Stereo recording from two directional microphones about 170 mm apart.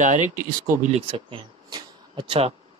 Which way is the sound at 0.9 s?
30° right (ahead or behind).